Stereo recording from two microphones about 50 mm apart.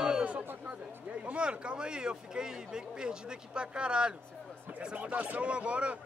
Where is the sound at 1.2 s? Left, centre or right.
Right.